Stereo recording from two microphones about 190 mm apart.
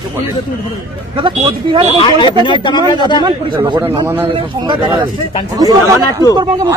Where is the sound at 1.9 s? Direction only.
25° left (ahead or behind).